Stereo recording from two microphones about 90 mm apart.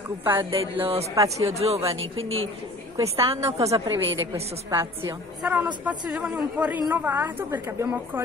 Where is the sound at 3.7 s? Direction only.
50° right (ahead or behind).